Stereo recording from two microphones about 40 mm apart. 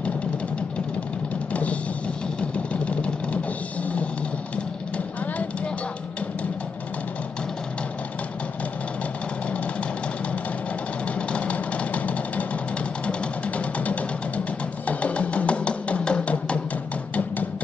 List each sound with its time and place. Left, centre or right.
1.5 s music: left
2.7 s vehicle: left
11.1 s music: left